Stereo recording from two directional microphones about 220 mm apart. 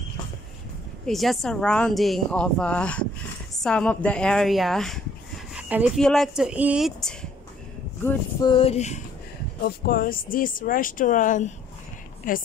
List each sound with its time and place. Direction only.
1.0 s speech: centre (ahead or behind)
8.5 s speech: 25° left (ahead or behind)
9.6 s speech: 40° left (ahead or behind)